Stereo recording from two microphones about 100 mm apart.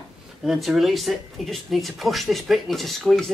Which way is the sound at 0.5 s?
5° right (ahead or behind).